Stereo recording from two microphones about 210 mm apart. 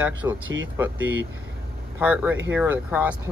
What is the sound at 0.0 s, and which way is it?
Speech, 10° right (ahead or behind).